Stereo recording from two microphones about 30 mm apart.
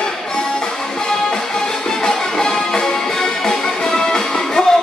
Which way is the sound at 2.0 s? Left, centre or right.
Left.